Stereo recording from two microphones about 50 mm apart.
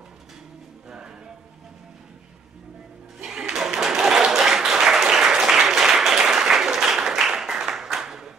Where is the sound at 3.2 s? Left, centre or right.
Centre.